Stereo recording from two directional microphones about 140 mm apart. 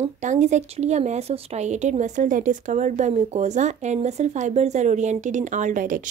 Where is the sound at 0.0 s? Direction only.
55° right (ahead or behind).